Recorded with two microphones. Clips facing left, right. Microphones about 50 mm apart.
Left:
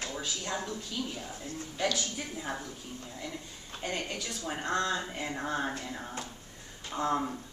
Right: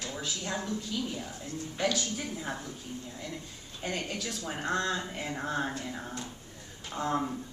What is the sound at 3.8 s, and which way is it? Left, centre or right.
A woman's voice, centre.